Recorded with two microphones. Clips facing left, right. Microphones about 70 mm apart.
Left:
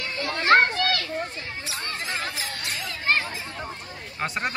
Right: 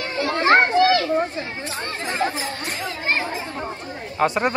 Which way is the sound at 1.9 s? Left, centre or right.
Right.